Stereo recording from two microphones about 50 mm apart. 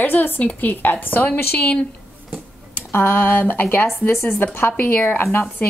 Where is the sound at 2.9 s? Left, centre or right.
Left.